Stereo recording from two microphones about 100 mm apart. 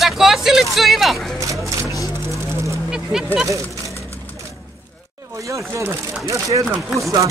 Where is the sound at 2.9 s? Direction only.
5° right (ahead or behind).